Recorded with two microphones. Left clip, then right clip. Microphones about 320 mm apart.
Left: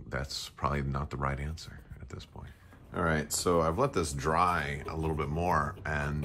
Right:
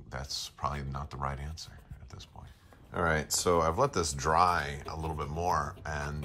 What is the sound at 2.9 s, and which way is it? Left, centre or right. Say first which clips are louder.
Speech: right 1 dB; right.